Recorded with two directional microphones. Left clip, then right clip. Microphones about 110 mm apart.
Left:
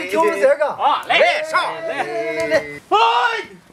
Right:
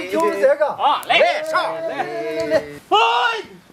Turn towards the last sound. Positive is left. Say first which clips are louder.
# left 1 dB
turn(degrees=-5)  # may be behind; listen again after turning